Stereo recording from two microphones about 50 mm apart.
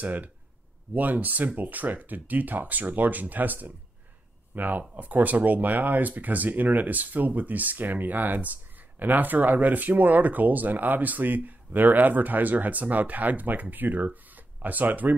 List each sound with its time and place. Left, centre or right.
0.0 s speech: right